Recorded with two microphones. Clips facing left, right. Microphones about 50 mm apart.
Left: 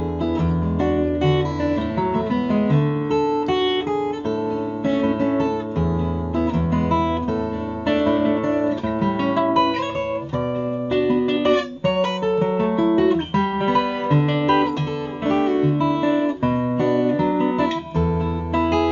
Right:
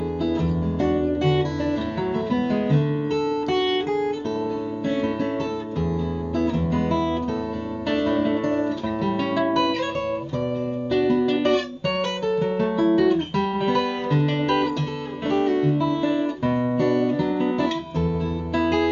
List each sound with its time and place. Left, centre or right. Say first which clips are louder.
0.4 s music: left 2 dB; left
5.0 s guitar: left 5 dB; centre
6.3 s music: left 1 dB; centre
6.7 s guitar: left 3 dB; left
7.9 s music: left 3 dB; left
10.9 s guitar: left 1 dB; left
12.3 s music: even; left
15.2 s guitar: left 2 dB; left